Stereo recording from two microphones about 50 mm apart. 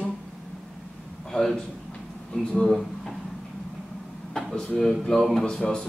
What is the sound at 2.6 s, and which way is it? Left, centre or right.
Speech, centre.